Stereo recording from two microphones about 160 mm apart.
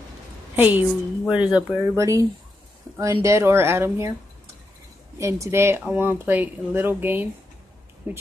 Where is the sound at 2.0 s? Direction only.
20° right (ahead or behind).